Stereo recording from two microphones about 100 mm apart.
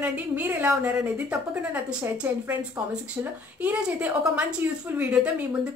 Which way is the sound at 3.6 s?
15° right (ahead or behind).